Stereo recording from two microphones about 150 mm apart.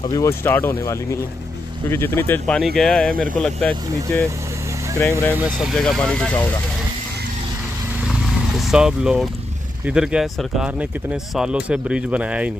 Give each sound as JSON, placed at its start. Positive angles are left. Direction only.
{"t": 0.1, "sound": "speech", "side_deg": 20}
{"t": 5.3, "sound": "speech", "side_deg": -5}
{"t": 8.5, "sound": "speech", "side_deg": -5}